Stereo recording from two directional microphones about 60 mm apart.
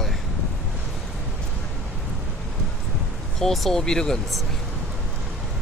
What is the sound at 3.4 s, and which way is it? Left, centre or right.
Speech, centre.